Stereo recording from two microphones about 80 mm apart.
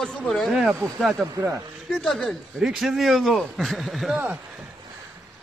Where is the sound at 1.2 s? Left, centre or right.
Right.